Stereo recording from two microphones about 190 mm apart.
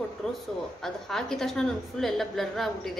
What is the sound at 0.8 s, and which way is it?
A woman's voice, centre (ahead or behind).